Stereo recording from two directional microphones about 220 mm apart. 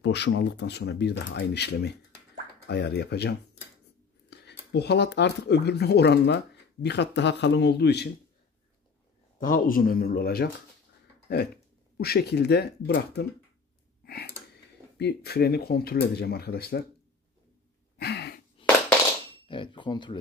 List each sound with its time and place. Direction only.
0.0 s speech: 50° left (ahead or behind)
9.4 s speech: 40° left (ahead or behind)
14.0 s a sound: 45° left (ahead or behind)
15.0 s speech: 50° left (ahead or behind)
17.9 s a sound: 50° left (ahead or behind)
19.4 s speech: 20° left (ahead or behind)